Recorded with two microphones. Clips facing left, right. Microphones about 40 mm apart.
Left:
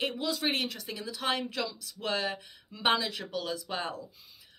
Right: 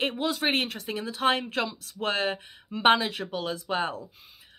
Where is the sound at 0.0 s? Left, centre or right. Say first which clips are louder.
Right 4 dB; right.